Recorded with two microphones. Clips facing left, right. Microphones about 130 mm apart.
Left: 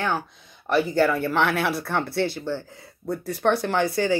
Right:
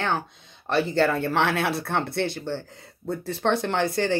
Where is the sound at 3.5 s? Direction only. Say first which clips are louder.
Left 2 dB; 25° right (ahead or behind).